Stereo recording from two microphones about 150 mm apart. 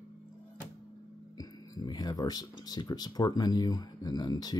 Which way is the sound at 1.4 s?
25° left (ahead or behind).